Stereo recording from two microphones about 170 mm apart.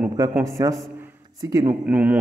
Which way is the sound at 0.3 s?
20° right (ahead or behind).